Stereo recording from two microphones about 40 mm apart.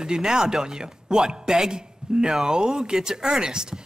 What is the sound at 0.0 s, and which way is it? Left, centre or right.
A man's voice, centre.